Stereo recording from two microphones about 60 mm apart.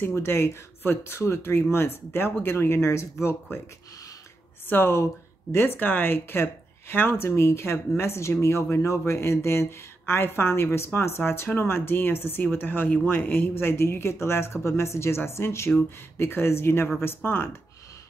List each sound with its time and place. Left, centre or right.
0.0 s speech: left
4.6 s speech: left
12.8 s speech: left